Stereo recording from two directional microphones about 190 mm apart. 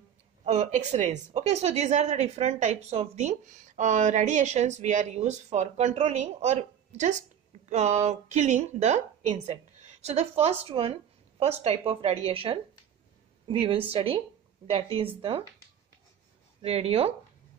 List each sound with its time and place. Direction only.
0.5 s speech: 35° right (ahead or behind)
16.6 s speech: 35° right (ahead or behind)